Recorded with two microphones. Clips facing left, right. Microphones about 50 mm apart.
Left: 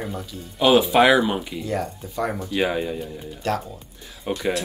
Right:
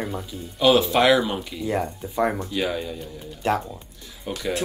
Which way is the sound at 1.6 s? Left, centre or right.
Centre.